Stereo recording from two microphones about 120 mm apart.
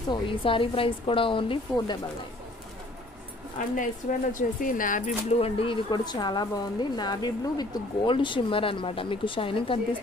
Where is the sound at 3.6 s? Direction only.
90° left.